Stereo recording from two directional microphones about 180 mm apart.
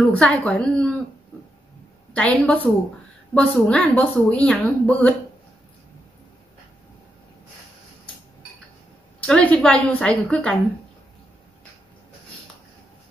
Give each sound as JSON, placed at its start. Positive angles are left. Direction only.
{"t": 0.1, "sound": "a woman's voice", "side_deg": 5}
{"t": 2.1, "sound": "a woman's voice", "side_deg": 10}
{"t": 9.2, "sound": "a woman's voice", "side_deg": 5}